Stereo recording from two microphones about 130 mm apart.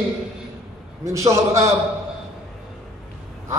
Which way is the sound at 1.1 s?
25° right (ahead or behind).